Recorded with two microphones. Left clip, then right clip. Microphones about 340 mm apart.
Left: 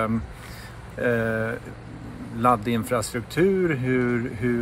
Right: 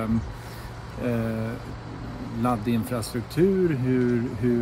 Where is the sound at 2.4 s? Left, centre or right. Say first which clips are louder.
Left 6 dB; centre.